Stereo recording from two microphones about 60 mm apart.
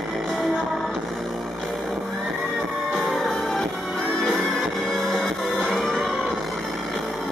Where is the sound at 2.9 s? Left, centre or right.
Centre.